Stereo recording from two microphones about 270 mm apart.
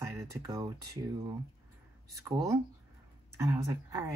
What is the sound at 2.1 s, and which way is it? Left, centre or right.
Speech, centre.